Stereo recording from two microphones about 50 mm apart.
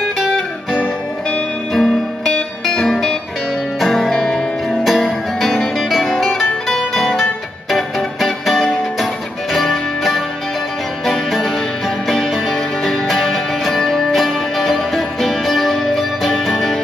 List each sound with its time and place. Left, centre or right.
1.7 s music: centre
4.6 s music: centre